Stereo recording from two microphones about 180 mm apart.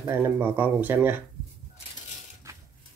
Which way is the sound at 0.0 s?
15° right (ahead or behind).